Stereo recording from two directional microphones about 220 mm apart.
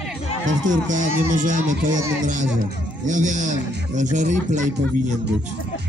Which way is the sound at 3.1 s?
35° right (ahead or behind).